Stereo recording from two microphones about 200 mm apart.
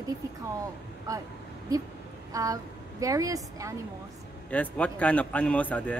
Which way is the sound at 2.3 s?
15° right (ahead or behind).